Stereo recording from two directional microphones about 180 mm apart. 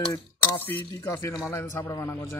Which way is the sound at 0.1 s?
10° left (ahead or behind).